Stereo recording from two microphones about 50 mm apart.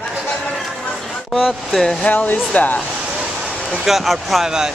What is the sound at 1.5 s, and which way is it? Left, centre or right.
Speech, centre.